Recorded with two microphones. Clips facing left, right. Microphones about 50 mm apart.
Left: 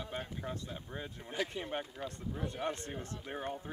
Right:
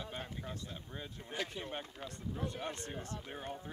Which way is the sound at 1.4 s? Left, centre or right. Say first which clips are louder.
Left 4 dB; centre.